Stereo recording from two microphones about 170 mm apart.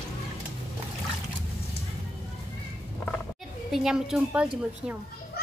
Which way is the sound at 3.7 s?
Centre (ahead or behind).